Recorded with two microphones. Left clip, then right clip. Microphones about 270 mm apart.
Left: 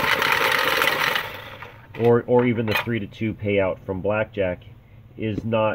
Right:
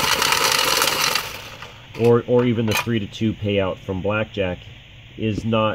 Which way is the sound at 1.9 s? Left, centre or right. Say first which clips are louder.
Right 1 dB; centre.